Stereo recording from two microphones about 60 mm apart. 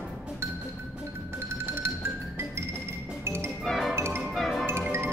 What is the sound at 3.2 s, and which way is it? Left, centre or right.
Music, right.